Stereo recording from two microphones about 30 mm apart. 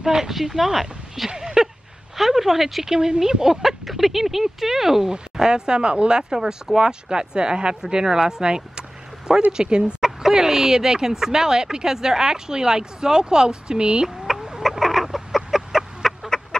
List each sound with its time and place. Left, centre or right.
0.0 s speech: centre
0.3 s speech: centre
1.3 s a sound: centre
2.1 s speech: centre
2.9 s speech: centre
3.6 s speech: centre
5.5 s speech: right
10.0 s speech: centre; by 14.0 s right
14.6 s chicken: centre
16.0 s fowl: centre